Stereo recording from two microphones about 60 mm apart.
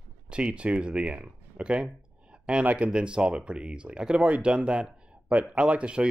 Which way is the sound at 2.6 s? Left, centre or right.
Right.